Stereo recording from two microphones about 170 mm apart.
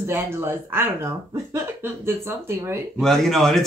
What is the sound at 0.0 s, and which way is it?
Speech, 15° right (ahead or behind).